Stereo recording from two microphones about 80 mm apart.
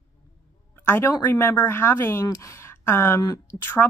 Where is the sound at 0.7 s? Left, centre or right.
Left.